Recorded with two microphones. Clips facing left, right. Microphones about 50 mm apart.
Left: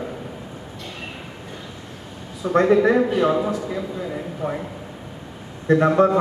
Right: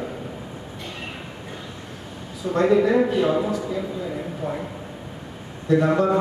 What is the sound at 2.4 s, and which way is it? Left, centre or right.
A man's voice, left.